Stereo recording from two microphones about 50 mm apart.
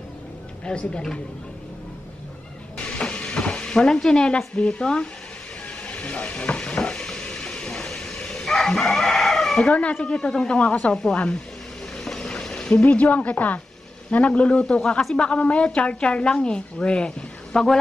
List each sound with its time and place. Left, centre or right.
0.7 s a woman's voice: centre
2.8 s speech: left
5.9 s stir: left; by 9.7 s centre
9.7 s a woman's voice: left
12.0 s a sound: centre
12.7 s a woman's voice: left; by 17.7 s centre